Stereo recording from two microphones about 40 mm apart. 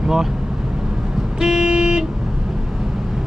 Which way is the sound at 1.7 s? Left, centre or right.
Right.